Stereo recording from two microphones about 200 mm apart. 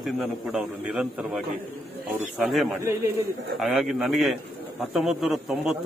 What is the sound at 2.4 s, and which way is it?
A man's voice, centre (ahead or behind).